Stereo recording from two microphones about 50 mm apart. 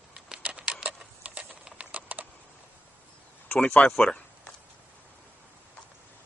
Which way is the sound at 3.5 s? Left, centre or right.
Left.